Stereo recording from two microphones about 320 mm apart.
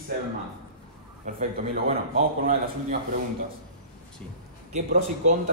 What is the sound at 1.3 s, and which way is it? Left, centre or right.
Speech, right.